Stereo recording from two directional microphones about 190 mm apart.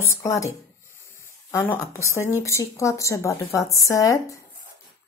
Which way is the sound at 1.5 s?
10° left (ahead or behind).